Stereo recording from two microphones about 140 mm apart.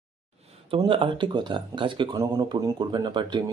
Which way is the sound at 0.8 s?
35° right (ahead or behind).